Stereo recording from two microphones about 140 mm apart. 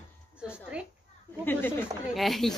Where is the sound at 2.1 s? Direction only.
Centre (ahead or behind).